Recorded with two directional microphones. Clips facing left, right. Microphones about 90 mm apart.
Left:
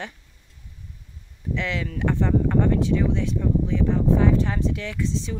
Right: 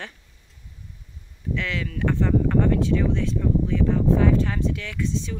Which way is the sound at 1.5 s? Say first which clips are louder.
Left 1 dB; 25° left (ahead or behind).